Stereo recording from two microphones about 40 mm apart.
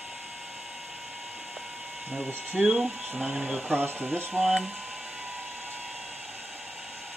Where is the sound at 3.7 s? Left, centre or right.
Right.